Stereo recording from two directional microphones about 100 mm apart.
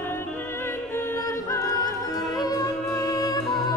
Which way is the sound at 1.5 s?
30° left (ahead or behind).